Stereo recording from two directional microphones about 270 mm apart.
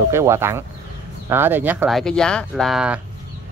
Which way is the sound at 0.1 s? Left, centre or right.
Centre.